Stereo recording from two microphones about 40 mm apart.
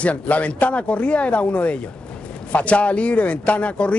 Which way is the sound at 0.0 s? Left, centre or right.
Left.